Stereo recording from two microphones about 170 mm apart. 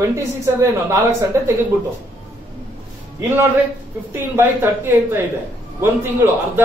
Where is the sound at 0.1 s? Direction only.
15° right (ahead or behind).